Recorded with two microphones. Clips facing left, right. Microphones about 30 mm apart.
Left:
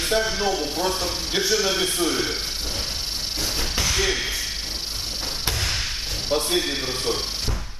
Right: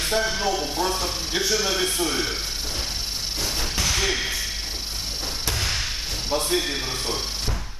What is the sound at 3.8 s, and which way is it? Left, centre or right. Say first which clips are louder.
Slam: even; centre.